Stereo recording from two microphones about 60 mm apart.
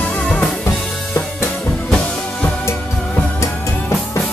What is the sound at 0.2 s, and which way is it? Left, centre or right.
Drum kit, centre.